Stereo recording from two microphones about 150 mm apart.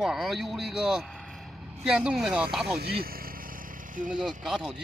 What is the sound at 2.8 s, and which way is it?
Insect, 90° right.